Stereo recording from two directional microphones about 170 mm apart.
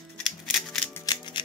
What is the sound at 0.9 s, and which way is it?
Music, 25° left (ahead or behind).